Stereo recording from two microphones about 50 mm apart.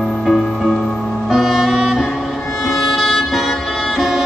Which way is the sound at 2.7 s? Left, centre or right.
Centre.